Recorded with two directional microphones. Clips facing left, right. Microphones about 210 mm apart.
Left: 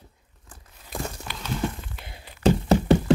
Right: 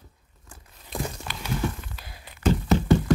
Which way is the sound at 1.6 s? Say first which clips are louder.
Left 1 dB; 25° left (ahead or behind).